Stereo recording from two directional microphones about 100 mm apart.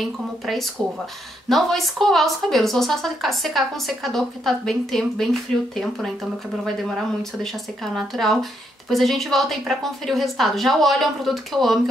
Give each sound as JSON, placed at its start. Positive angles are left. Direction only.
{"t": 0.0, "sound": "speech", "side_deg": 0}